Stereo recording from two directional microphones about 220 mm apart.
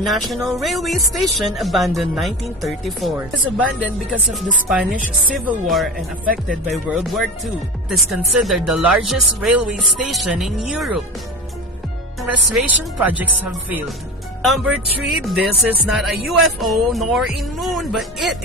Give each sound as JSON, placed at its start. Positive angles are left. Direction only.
{"t": 0.0, "sound": "speech", "side_deg": 0}
{"t": 6.2, "sound": "music", "side_deg": -40}
{"t": 6.9, "sound": "speech", "side_deg": 0}
{"t": 12.2, "sound": "speech", "side_deg": -5}